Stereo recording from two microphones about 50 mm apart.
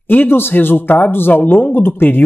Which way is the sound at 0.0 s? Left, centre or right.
Left.